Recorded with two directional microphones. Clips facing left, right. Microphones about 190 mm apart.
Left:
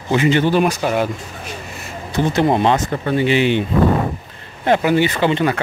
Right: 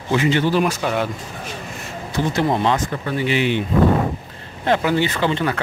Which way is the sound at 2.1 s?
20° left (ahead or behind).